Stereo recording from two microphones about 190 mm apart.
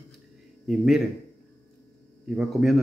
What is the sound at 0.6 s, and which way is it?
Speech, centre (ahead or behind).